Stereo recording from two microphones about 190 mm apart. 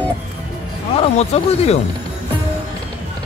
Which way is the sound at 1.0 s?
35° left (ahead or behind).